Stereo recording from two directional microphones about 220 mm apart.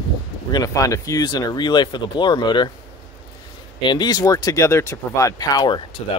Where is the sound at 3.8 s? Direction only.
20° left (ahead or behind).